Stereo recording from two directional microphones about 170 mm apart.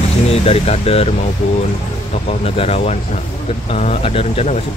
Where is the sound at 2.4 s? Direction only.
35° left (ahead or behind).